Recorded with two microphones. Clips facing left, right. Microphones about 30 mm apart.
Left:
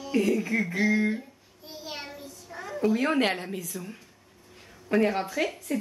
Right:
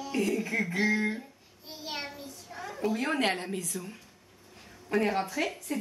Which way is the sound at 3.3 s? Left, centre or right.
Centre.